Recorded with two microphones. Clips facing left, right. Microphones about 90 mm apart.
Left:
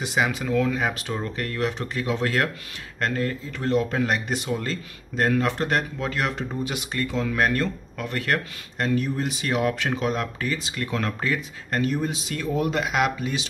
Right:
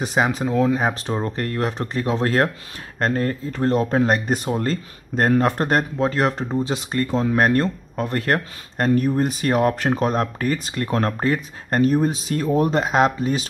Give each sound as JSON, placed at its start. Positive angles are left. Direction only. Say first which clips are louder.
{"t": 0.0, "sound": "speech", "louder": "right 4 dB", "side_deg": -35}